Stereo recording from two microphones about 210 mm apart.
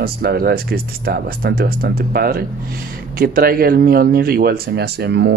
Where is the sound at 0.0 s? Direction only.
45° right (ahead or behind).